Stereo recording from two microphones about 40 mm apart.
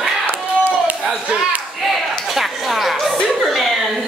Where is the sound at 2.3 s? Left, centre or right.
Centre.